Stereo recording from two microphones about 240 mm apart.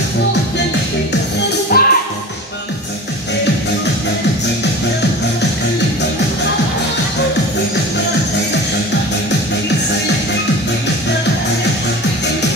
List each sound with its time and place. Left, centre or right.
1.7 s music: left